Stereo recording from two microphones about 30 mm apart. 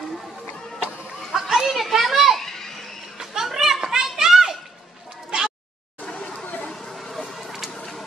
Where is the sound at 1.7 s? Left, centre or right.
Centre.